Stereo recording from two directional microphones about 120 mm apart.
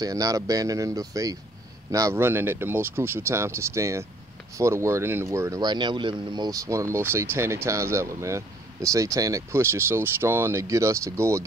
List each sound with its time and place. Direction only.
0.0 s speech: 30° right (ahead or behind)
5.6 s speech: 40° right (ahead or behind); by 11.4 s 25° right (ahead or behind)